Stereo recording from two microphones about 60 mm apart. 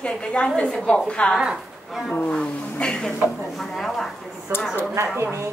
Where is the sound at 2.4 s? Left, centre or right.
Centre.